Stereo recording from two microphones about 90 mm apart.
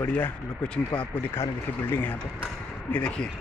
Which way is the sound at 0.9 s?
15° left (ahead or behind).